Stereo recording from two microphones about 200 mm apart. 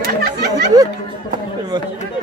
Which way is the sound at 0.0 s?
55° right (ahead or behind).